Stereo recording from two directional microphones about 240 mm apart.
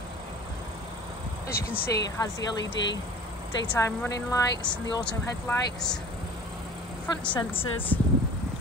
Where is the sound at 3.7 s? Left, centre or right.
Centre.